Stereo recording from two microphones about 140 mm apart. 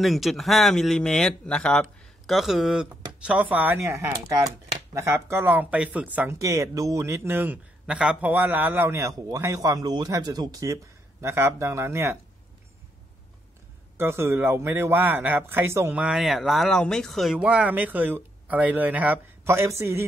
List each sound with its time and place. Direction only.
0.0 s speech: centre (ahead or behind)
6.3 s a man's voice: 20° right (ahead or behind)
13.9 s speech: 15° right (ahead or behind)